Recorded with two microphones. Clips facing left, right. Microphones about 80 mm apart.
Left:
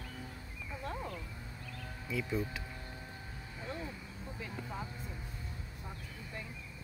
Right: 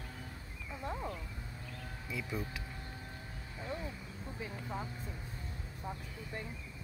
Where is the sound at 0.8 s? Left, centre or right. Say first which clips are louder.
Right 1 dB; centre.